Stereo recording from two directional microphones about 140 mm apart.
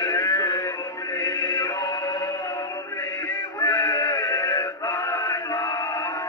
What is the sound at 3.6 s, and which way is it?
Synthetic singing, 25° left (ahead or behind).